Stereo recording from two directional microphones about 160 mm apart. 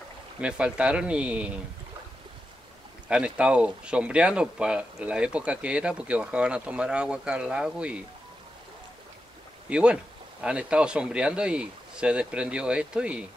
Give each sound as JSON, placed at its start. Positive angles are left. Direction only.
{"t": 0.4, "sound": "speech", "side_deg": -5}
{"t": 3.1, "sound": "speech", "side_deg": -5}
{"t": 9.7, "sound": "speech", "side_deg": -5}